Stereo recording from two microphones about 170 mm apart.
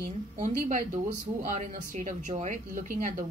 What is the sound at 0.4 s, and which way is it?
Speech, 45° right (ahead or behind).